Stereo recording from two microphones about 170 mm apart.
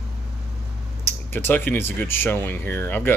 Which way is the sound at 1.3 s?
10° left (ahead or behind).